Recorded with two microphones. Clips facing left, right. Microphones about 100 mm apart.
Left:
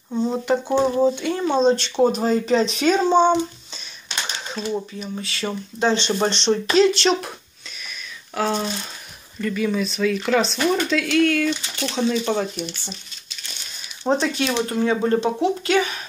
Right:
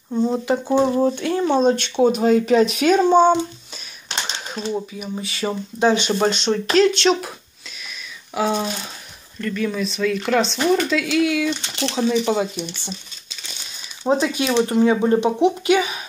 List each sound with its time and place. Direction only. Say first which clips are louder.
0.1 s speech: right 1 dB; centre (ahead or behind)
1.2 s speech: right 1 dB; centre (ahead or behind)
8.4 s speech: right 2 dB; 10° right (ahead or behind)
9.4 s speech: left 1 dB; 5° left (ahead or behind)
11.6 s speech: right 3 dB; 30° right (ahead or behind)
11.9 s speech: right 2 dB; 10° right (ahead or behind)
14.0 s speech: right 1 dB; 5° right (ahead or behind)
14.7 s speech: right 3 dB; 20° right (ahead or behind)